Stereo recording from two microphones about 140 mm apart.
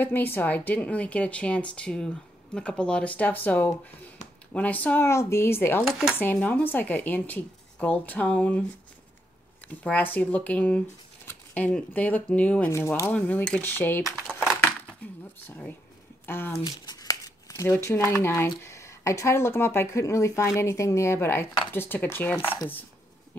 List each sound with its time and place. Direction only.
0.0 s speech: 15° left (ahead or behind)
5.9 s cutlery: centre (ahead or behind)
6.1 s speech: 10° left (ahead or behind)
9.8 s speech: 10° left (ahead or behind)
14.2 s crumpling: 5° right (ahead or behind)
15.4 s speech: 15° left (ahead or behind)
16.6 s shuffling cards: 30° left (ahead or behind)
17.6 s a woman's voice: 20° left (ahead or behind)